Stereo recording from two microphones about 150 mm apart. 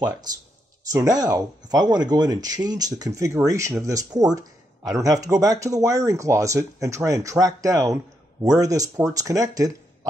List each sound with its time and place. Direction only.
0.9 s speech: 25° right (ahead or behind)